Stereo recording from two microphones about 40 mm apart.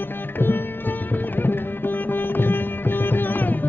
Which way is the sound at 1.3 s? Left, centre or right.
Left.